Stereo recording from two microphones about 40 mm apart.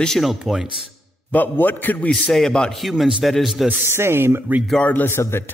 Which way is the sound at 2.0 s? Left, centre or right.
Left.